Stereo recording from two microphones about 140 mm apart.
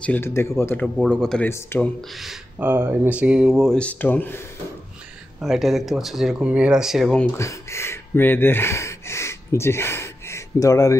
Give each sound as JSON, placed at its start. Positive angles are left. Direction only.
{"t": 0.0, "sound": "speech", "side_deg": 15}
{"t": 1.1, "sound": "speech", "side_deg": 5}
{"t": 1.5, "sound": "speech", "side_deg": 15}
{"t": 2.6, "sound": "speech", "side_deg": -15}
{"t": 3.5, "sound": "speech", "side_deg": 5}
{"t": 5.4, "sound": "speech", "side_deg": 0}
{"t": 7.3, "sound": "speech", "side_deg": 20}